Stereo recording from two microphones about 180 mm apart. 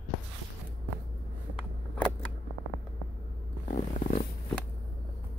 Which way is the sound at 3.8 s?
40° left (ahead or behind).